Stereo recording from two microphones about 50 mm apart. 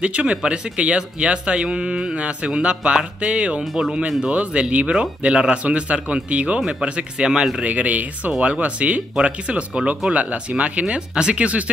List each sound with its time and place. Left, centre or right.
0.0 s a man's voice: right
7.6 s speech: right